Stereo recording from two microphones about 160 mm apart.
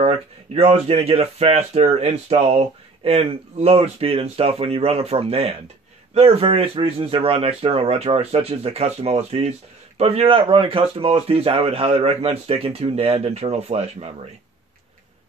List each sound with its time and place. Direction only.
0.6 s speech: 40° right (ahead or behind)